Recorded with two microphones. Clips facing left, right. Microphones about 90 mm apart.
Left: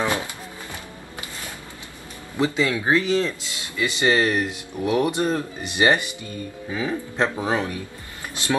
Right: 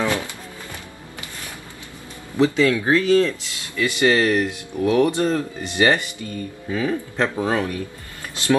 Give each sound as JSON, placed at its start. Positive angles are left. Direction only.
{"t": 0.0, "sound": "music", "side_deg": 20}
{"t": 2.3, "sound": "speech", "side_deg": 20}